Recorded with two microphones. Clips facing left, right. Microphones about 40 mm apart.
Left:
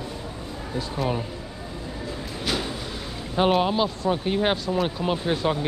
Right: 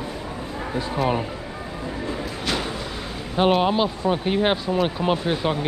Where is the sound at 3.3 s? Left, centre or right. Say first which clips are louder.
Right 2 dB; centre.